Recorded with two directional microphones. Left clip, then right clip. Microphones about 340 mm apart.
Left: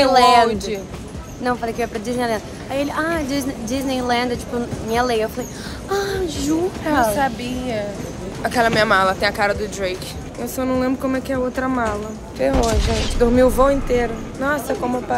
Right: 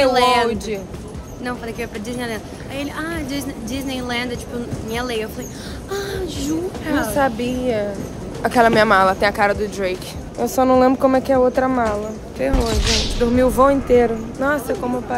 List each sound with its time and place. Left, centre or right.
0.0 s a sound: centre
1.4 s speech: centre
7.2 s speech: centre